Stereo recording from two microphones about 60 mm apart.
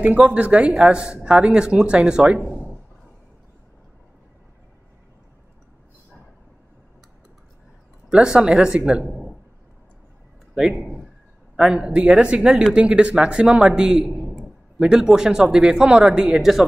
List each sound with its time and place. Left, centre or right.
0.0 s speech: right
8.1 s speech: centre
10.5 s speech: centre
11.9 s speech: centre